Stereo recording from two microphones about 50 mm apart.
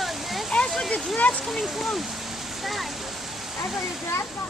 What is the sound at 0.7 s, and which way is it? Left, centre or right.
Speech, centre.